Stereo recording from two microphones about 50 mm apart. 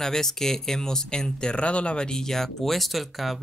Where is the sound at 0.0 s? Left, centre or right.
Centre.